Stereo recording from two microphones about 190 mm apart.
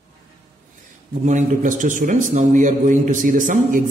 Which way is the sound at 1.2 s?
40° right (ahead or behind).